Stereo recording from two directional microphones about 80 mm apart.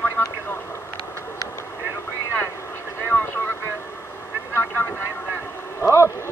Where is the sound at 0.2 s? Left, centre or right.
Left.